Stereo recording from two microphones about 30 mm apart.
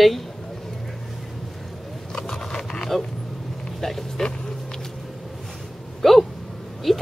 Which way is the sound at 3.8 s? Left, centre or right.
Centre.